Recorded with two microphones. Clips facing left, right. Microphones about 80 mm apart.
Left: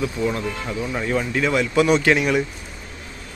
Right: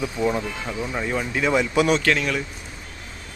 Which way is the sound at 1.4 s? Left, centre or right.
Centre.